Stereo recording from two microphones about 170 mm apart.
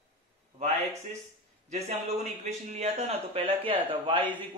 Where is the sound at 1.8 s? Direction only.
40° right (ahead or behind).